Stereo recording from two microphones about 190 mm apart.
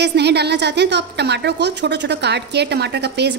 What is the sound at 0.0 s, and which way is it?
A woman's voice, 60° right (ahead or behind).